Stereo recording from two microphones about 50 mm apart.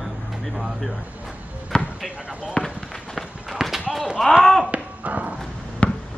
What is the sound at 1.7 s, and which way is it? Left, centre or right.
Basketball bounce, centre.